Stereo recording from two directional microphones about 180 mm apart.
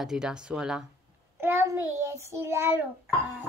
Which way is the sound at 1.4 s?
15° right (ahead or behind).